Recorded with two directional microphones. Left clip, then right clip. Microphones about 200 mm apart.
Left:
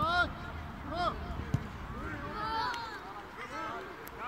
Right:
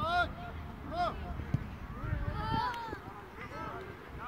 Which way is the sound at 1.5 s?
10° left (ahead or behind).